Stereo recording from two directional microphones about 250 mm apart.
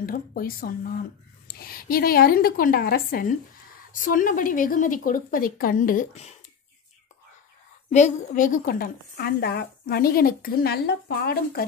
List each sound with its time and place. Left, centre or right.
0.0 s a woman's voice: left
7.9 s a woman's voice: left